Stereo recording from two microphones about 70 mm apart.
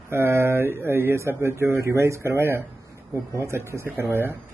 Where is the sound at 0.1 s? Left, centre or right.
Right.